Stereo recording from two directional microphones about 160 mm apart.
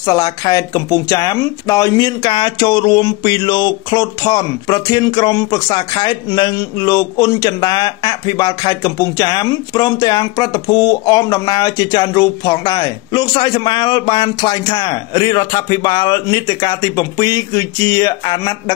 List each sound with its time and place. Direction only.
0.0 s speech: 25° left (ahead or behind)